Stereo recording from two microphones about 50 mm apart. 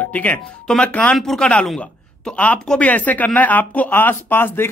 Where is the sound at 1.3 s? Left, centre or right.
Left.